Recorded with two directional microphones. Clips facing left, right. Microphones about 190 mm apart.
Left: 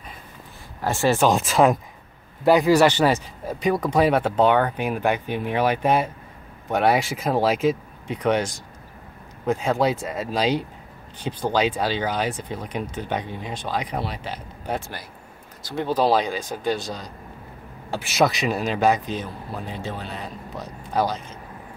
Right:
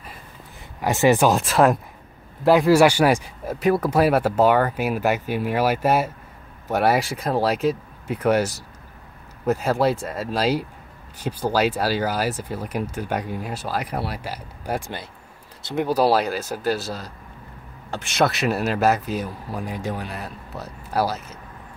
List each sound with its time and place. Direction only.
0.7 s speech: 15° right (ahead or behind)
1.3 s speech: centre (ahead or behind)